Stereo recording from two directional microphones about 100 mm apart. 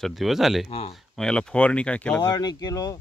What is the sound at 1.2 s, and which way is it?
Speech, 10° left (ahead or behind).